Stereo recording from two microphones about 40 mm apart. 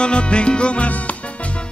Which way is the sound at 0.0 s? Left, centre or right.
Left.